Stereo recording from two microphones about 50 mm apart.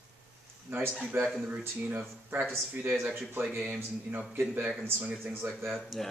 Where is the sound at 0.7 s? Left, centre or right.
Right.